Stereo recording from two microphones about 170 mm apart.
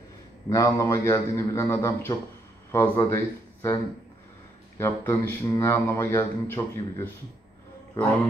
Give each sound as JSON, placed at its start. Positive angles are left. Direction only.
{"t": 0.5, "sound": "speech", "side_deg": 20}
{"t": 4.7, "sound": "speech", "side_deg": 15}